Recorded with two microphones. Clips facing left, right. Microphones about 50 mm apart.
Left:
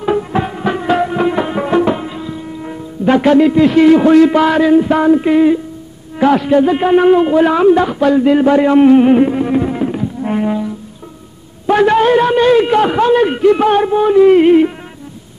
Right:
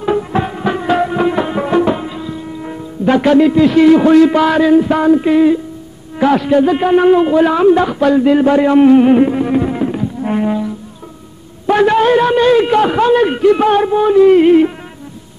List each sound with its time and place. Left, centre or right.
0.0 s music: centre
3.2 s speech: centre
5.3 s music: left
6.1 s speech: centre
7.7 s speech: centre
9.3 s music: centre
11.7 s music: centre
12.0 s a sound: centre
12.5 s speech: centre
13.7 s music: centre